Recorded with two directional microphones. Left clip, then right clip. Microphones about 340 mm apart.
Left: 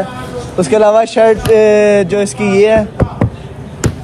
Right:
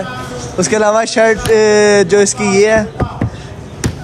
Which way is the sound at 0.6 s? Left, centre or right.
Centre.